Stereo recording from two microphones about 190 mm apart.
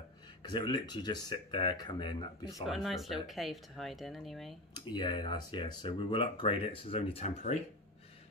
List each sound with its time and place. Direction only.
0.4 s speech: 25° left (ahead or behind)
2.6 s speech: centre (ahead or behind)
4.7 s speech: 25° left (ahead or behind)